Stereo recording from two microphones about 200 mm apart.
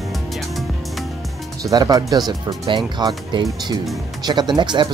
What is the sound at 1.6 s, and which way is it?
Speech, 20° right (ahead or behind).